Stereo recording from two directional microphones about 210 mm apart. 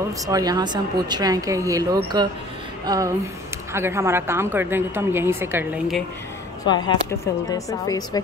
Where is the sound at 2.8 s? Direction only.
15° right (ahead or behind).